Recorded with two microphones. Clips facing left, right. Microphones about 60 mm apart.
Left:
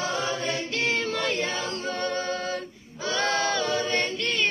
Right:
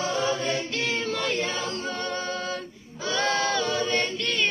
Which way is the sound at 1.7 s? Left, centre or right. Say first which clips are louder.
Left 1 dB; left.